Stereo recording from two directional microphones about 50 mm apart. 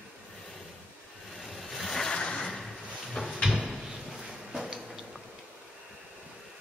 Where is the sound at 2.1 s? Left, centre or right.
Centre.